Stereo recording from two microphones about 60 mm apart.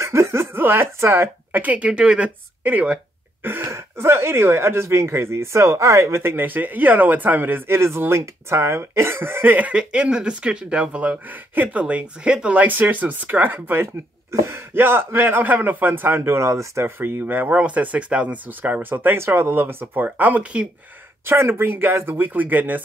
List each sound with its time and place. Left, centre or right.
0.0 s laughter: right
1.0 s speech: right
1.5 s speech: right
3.4 s speech: right
9.6 s speech: centre
12.5 s speech: right
14.3 s speech: right
16.2 s speech: right
17.0 s speech: right
18.6 s speech: right
19.2 s speech: right
21.3 s speech: right